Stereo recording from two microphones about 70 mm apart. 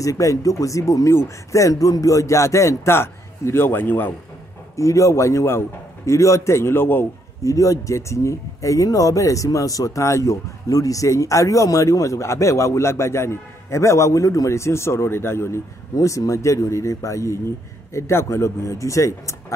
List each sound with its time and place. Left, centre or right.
0.0 s speech: left
4.7 s speech: left
7.4 s speech: left